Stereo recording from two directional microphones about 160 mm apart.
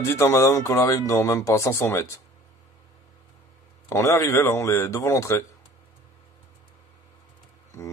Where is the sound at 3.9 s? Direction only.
15° left (ahead or behind).